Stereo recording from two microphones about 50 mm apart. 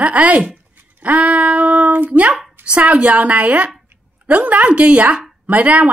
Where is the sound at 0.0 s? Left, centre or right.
Right.